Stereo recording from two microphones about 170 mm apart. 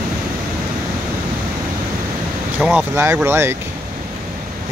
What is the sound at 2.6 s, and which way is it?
Speech, 10° right (ahead or behind).